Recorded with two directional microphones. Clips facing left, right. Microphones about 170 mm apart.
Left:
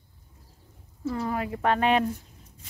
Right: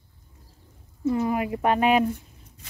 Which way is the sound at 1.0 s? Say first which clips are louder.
Right 5 dB; 15° right (ahead or behind).